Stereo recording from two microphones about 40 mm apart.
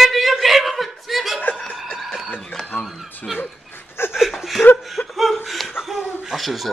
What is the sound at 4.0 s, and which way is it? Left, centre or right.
Chuckle, left.